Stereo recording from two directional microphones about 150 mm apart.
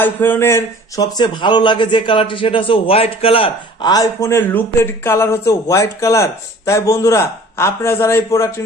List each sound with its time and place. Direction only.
0.0 s a man's voice: 15° left (ahead or behind); by 3.9 s 40° left (ahead or behind)
3.9 s speech: 20° left (ahead or behind)